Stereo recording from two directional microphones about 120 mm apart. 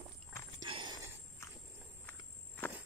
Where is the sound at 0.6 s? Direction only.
45° right (ahead or behind).